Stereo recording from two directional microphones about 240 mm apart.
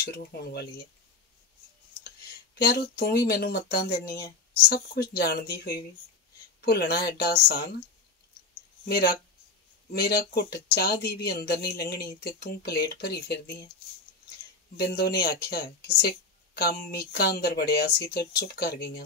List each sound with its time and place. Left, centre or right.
0.0 s speech: left
2.6 s speech: left
8.8 s speech: left
14.8 s speech: left